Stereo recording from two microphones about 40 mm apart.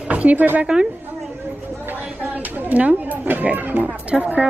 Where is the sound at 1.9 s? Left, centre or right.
Right.